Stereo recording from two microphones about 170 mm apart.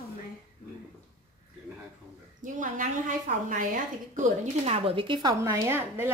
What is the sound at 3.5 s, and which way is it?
Speech, 50° right (ahead or behind).